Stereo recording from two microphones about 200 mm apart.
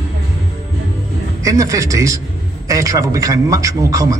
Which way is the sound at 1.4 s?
15° right (ahead or behind).